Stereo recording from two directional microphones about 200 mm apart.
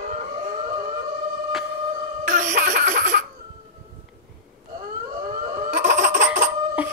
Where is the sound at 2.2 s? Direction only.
40° right (ahead or behind).